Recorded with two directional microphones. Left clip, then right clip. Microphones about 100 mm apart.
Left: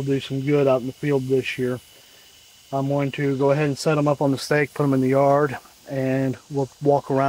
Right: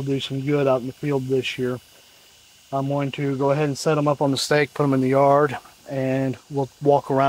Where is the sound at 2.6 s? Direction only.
35° right (ahead or behind).